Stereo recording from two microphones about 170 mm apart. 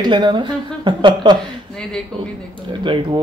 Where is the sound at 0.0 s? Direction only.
25° right (ahead or behind).